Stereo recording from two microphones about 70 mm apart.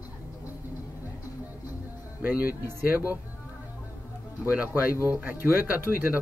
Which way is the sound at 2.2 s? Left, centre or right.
Right.